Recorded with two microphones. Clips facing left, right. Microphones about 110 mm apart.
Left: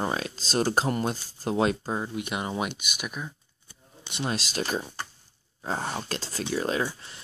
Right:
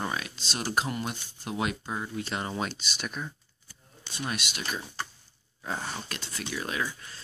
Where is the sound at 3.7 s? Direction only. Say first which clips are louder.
Left 2 dB; 25° left (ahead or behind).